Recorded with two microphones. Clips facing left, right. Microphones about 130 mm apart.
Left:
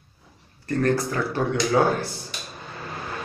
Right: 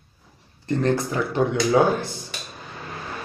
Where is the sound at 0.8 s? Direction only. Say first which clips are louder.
Even; 20° right (ahead or behind).